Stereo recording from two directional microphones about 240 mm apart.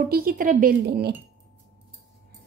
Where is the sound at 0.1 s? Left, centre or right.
Right.